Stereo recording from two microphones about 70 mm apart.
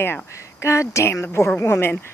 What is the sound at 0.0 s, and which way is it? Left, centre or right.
Speech, left.